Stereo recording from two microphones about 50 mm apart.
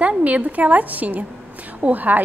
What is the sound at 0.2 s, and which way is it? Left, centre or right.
A woman's voice, right.